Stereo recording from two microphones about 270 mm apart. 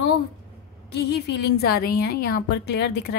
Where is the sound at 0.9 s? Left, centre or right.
Left.